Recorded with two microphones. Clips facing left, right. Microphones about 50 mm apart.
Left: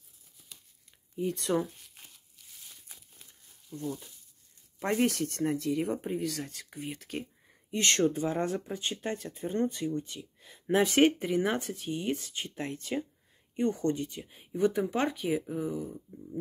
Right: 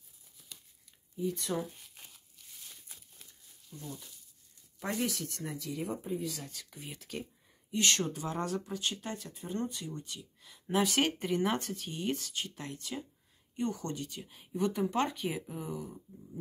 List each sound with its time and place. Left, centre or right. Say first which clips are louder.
1.1 s speech: left 5 dB; left
1.6 s crumpling: left 4 dB; centre
3.7 s speech: left 9 dB; left
4.8 s speech: left 7 dB; left
8.2 s speech: left 5 dB; left
11.1 s speech: left 2 dB; centre
12.4 s speech: left 6 dB; left
14.3 s speech: left 5 dB; centre